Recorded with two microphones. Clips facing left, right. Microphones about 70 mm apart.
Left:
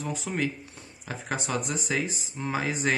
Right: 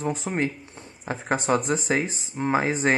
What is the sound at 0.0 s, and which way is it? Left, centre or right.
Speech, right.